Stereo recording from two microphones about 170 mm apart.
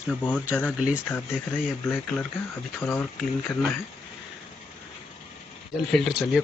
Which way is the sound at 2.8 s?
5° left (ahead or behind).